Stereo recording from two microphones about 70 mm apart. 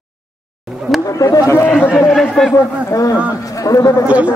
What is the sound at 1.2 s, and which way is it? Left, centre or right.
Speech, left.